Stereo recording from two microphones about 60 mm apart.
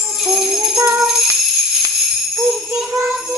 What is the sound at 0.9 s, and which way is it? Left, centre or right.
Jingle bell, centre.